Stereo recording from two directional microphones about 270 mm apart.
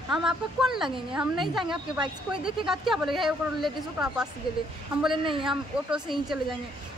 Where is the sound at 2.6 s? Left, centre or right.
Centre.